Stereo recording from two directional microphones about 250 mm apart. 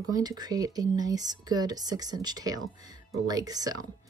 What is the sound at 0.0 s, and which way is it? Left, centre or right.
Speech, centre.